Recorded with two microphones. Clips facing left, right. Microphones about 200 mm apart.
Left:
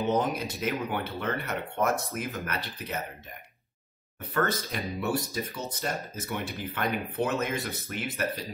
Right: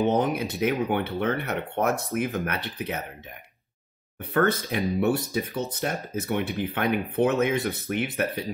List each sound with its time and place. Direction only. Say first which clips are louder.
0.1 s speech: right 3 dB; 60° right (ahead or behind)
4.2 s speech: right 5 dB; 55° right (ahead or behind)